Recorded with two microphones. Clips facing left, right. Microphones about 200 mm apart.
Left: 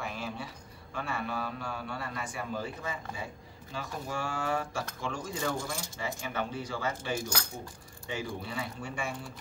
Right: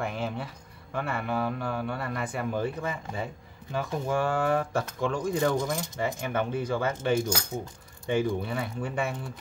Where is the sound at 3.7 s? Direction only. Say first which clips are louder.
Right 9 dB; 55° right (ahead or behind).